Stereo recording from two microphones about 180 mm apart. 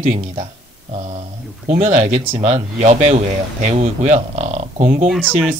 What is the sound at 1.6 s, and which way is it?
Speech, 40° right (ahead or behind).